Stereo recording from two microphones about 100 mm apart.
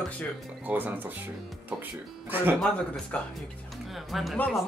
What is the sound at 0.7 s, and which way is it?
Speech, 20° right (ahead or behind).